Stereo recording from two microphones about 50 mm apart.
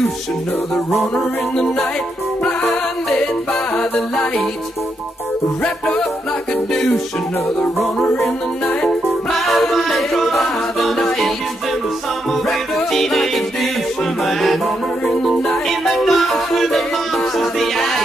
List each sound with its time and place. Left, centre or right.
1.1 s music: centre
5.6 s music: centre
8.8 s music: centre
12.7 s music: centre